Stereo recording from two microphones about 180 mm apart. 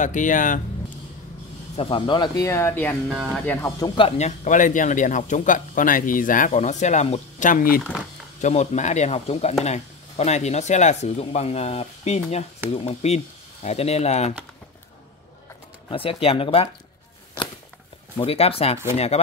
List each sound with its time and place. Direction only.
0.0 s a man's voice: 45° left (ahead or behind)
1.8 s speech: 30° left (ahead or behind); by 3.0 s 10° left (ahead or behind)
3.1 s speech: 5° right (ahead or behind)
3.4 s speech: 20° left (ahead or behind)
4.2 s a man's voice: 45° left (ahead or behind)
15.9 s speech: 30° left (ahead or behind)
18.1 s speech: 30° left (ahead or behind)